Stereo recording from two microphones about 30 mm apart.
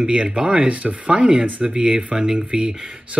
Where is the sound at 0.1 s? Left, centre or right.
Right.